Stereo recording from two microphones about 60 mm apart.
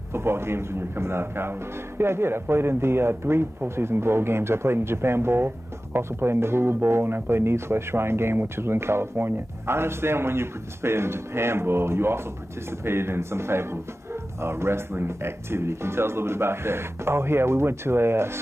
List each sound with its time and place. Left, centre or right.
0.1 s speech: right